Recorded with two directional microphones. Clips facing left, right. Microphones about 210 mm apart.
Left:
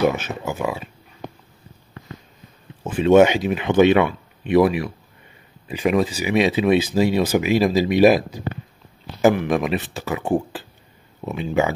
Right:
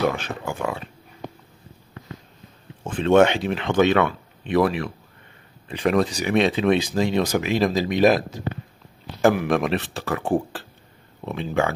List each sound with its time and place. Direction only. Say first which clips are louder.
0.0 s speech: left 3 dB; 20° left (ahead or behind)
0.5 s speech: left 3 dB; 5° left (ahead or behind)
2.8 s speech: left 3 dB; 10° left (ahead or behind)
9.3 s speech: left 1 dB; centre (ahead or behind)